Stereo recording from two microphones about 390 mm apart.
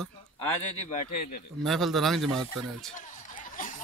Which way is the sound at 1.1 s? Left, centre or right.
Left.